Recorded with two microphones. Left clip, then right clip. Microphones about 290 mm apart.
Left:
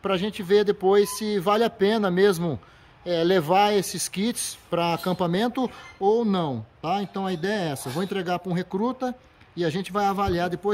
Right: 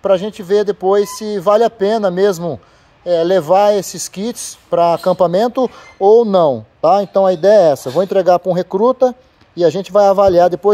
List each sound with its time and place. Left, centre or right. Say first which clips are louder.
0.0 s a man's voice: right 12 dB; centre
7.8 s a man's voice: right 15 dB; centre
8.1 s speech: right 17 dB; centre
8.8 s a man's voice: right 15 dB; centre
9.6 s speech: right 14 dB; centre